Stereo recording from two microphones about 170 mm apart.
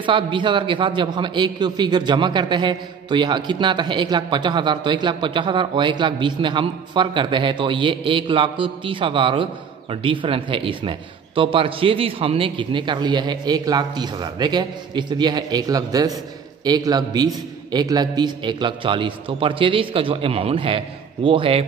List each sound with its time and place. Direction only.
0.0 s a man's voice: 30° right (ahead or behind)